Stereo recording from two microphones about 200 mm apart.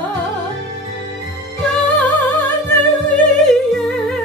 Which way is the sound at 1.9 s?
10° left (ahead or behind).